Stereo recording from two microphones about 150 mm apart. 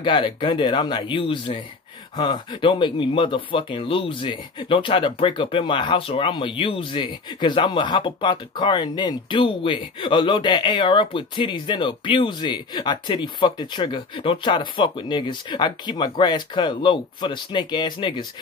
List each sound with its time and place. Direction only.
0.0 s speech: 30° left (ahead or behind)